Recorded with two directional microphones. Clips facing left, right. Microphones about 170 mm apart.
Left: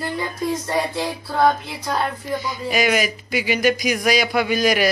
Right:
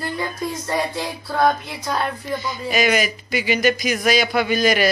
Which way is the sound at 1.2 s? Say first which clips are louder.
Even; 5° left (ahead or behind).